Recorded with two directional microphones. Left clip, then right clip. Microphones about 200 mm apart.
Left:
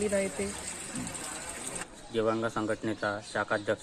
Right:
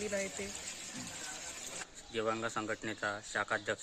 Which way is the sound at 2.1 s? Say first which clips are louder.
Left 6 dB; 20° right (ahead or behind).